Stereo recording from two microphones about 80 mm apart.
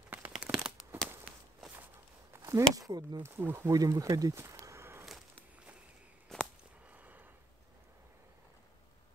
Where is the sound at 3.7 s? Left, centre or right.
Right.